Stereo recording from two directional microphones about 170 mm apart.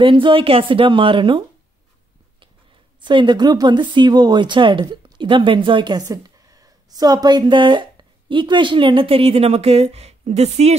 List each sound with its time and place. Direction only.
0.0 s speech: 30° right (ahead or behind)
3.0 s speech: 25° right (ahead or behind)